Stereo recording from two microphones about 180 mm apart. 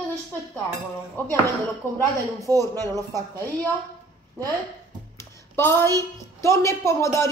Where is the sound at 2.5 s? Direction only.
20° right (ahead or behind).